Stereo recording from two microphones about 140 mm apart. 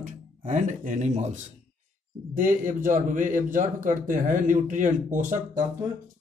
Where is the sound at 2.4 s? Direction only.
70° right (ahead or behind).